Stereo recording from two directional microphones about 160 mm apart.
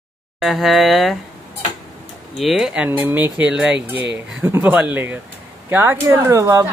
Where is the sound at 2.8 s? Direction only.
10° right (ahead or behind).